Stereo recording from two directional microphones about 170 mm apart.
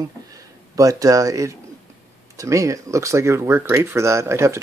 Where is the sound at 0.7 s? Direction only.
20° right (ahead or behind).